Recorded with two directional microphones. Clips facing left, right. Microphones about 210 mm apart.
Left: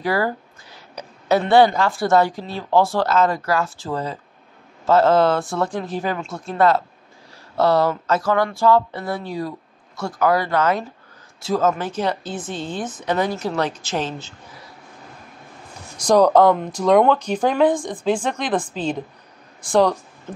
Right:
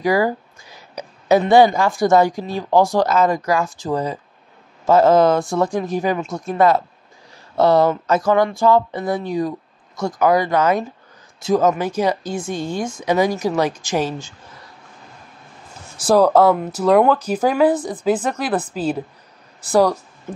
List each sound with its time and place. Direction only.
0.0 s a woman's voice: 15° right (ahead or behind)
16.0 s a woman's voice: 5° right (ahead or behind)